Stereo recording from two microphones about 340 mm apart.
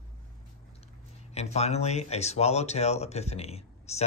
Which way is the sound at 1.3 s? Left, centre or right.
Centre.